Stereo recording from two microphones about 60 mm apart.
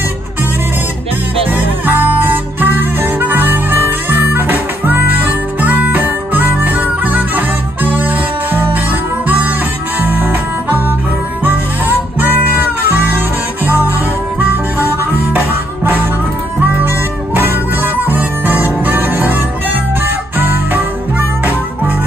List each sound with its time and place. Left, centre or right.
1.5 s music: right
13.7 s music: left
18.0 s music: right